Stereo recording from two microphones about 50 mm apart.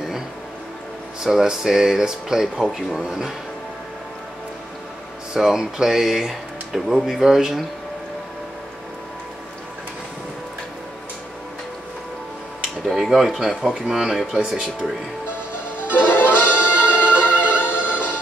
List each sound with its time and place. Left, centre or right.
1.2 s speech: centre
5.3 s speech: centre
12.6 s speech: centre
15.9 s music: left
16.4 s music: right
17.2 s music: left
17.9 s music: right